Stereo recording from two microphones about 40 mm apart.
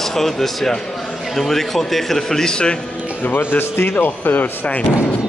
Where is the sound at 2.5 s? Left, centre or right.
Left.